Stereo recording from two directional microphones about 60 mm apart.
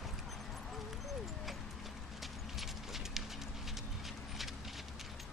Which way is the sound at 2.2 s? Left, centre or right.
Centre.